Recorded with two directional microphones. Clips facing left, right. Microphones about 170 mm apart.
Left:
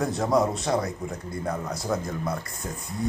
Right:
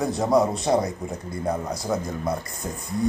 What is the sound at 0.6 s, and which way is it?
Speech, 15° right (ahead or behind).